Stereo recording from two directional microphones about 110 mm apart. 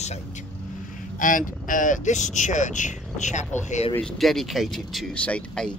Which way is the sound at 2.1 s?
90° left.